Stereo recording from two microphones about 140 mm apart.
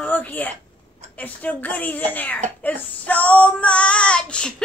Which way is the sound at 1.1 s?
10° left (ahead or behind).